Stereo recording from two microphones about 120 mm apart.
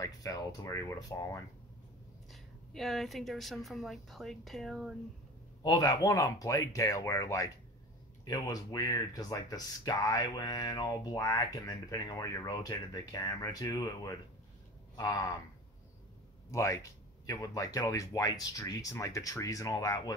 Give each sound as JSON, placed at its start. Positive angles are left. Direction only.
{"t": 0.0, "sound": "speech", "side_deg": 30}
{"t": 2.3, "sound": "a woman's voice", "side_deg": 0}
{"t": 5.6, "sound": "speech", "side_deg": 30}
{"t": 16.4, "sound": "speech", "side_deg": 25}